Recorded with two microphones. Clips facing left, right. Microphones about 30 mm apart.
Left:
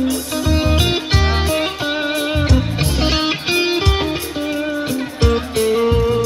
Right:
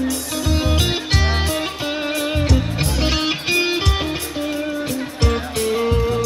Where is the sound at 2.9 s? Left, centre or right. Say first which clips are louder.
Left 3 dB; left.